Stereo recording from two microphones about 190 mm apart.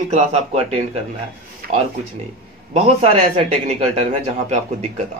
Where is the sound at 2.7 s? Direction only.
35° right (ahead or behind).